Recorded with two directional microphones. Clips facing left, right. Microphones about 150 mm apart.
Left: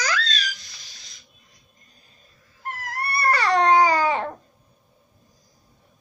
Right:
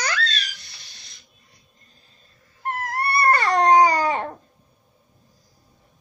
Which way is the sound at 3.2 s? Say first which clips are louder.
Right 1 dB; 50° right (ahead or behind).